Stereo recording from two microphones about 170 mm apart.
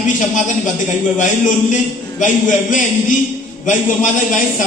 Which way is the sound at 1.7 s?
50° left (ahead or behind).